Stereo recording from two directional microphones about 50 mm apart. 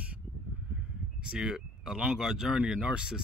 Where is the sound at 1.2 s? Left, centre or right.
Centre.